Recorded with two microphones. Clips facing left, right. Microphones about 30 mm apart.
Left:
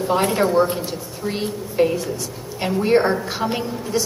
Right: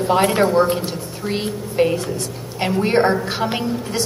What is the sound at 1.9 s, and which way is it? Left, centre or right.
Speech, right.